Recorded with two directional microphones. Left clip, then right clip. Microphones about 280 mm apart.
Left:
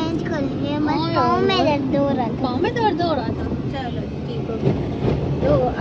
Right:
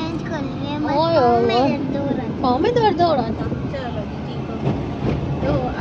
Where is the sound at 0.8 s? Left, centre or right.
Centre.